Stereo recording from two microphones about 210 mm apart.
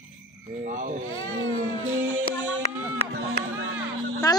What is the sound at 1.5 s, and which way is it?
Baby cry, 35° right (ahead or behind).